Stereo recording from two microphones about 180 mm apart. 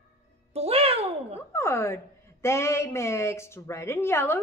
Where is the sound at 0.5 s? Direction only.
35° right (ahead or behind).